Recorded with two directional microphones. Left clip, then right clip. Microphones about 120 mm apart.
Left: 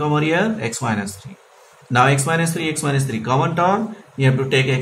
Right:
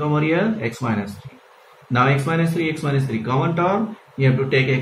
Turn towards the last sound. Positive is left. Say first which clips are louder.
# left 1 dB
turn(degrees=15)  # may be behind; listen again after turning